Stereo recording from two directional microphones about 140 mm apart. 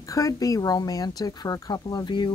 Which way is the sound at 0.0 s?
25° left (ahead or behind).